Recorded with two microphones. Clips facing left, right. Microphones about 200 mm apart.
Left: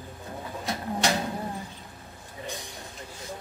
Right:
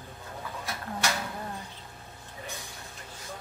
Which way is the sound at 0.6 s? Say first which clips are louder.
Left 6 dB; 20° left (ahead or behind).